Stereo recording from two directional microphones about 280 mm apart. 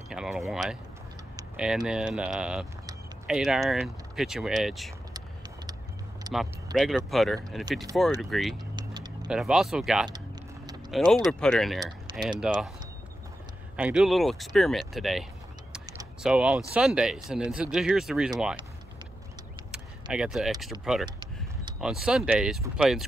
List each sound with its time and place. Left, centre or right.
0.1 s speech: centre
6.3 s speech: centre
8.7 s vehicle: centre
9.3 s speech: centre
13.7 s speech: centre
19.7 s vehicle: centre
20.8 s speech: centre